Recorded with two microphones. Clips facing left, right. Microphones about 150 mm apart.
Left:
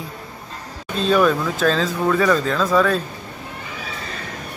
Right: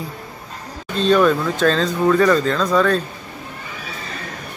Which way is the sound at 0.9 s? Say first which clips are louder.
Right 2 dB; 5° left (ahead or behind).